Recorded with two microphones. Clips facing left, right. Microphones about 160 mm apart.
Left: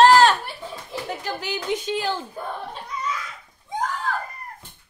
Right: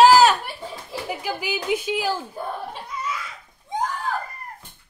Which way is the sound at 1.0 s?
10° right (ahead or behind).